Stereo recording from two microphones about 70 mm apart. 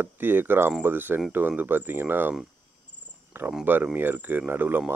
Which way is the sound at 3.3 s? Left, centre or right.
Right.